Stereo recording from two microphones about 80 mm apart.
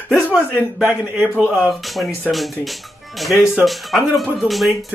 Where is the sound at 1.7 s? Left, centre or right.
Centre.